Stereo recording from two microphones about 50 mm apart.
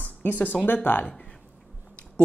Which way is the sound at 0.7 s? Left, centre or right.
Left.